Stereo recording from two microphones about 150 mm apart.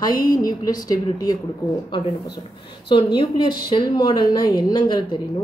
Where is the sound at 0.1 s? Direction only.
70° left (ahead or behind).